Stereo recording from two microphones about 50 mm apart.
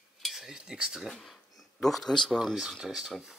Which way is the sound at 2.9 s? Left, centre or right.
Centre.